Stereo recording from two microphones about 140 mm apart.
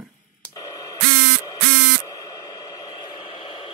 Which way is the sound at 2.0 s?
25° left (ahead or behind).